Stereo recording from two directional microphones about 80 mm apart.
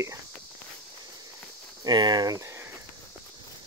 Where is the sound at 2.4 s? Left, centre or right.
Right.